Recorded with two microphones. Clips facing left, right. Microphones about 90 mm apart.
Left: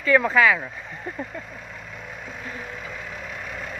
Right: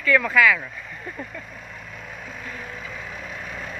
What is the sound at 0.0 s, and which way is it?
Speech, 25° left (ahead or behind).